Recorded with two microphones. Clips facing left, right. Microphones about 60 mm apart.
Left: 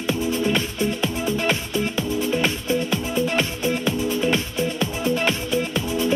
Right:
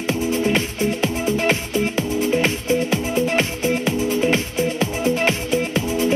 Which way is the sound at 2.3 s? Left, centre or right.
Centre.